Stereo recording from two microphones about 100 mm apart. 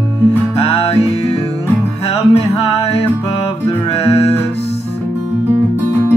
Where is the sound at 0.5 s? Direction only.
75° left (ahead or behind).